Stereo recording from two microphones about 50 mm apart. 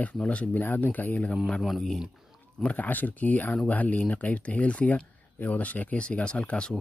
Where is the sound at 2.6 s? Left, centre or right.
Left.